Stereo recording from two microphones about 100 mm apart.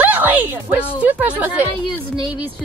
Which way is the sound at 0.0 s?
15° right (ahead or behind).